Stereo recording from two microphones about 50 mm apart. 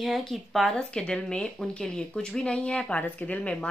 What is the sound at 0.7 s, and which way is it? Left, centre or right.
A woman's voice, centre.